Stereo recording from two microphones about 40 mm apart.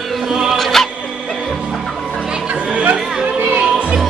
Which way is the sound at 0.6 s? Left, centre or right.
Centre.